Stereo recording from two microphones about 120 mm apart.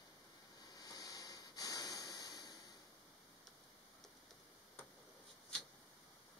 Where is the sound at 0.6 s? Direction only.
35° left (ahead or behind).